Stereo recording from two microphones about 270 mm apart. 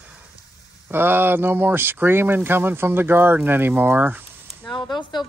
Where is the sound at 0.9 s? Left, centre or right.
Centre.